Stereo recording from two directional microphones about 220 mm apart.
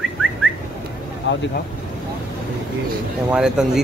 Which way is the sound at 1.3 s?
55° left (ahead or behind).